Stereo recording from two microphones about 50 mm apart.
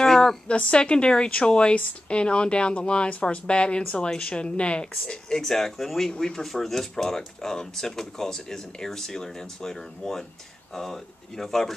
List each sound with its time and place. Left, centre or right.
0.0 s a sound: centre
0.5 s speech: left
5.4 s speech: centre